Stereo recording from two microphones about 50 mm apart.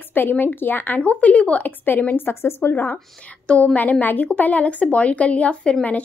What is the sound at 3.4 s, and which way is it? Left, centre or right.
A woman's voice, left.